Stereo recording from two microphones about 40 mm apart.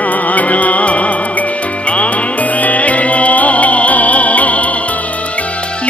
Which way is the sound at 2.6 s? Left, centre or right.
Left.